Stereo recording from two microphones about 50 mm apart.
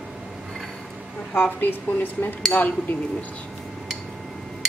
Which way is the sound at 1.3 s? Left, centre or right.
Left.